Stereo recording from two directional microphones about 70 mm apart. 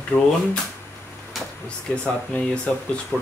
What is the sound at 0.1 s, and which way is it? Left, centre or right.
Speech, left.